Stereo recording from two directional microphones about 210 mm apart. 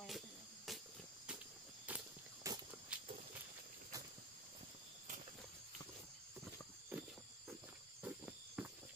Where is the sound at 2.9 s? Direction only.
5° right (ahead or behind).